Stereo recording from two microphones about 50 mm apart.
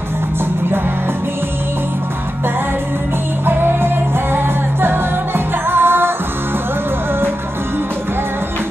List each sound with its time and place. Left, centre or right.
3.4 s music: right